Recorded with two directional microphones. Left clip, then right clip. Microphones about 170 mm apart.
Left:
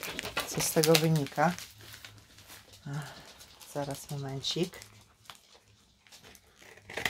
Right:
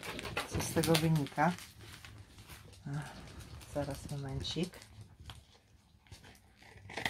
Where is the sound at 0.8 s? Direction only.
45° left (ahead or behind).